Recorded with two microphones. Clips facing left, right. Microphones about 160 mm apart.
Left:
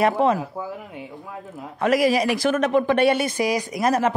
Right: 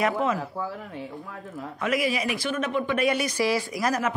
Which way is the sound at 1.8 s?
40° left (ahead or behind).